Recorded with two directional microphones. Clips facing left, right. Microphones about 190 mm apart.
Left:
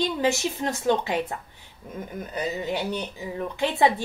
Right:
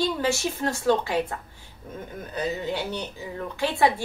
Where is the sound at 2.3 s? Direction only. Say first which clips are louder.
Even; 15° left (ahead or behind).